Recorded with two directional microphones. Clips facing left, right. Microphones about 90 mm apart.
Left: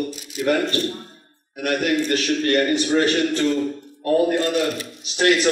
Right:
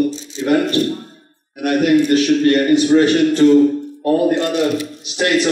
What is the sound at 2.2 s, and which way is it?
Speech, 35° right (ahead or behind).